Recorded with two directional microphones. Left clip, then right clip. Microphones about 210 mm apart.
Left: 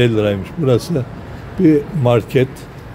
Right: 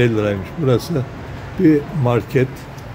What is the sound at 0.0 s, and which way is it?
Speech, 10° left (ahead or behind).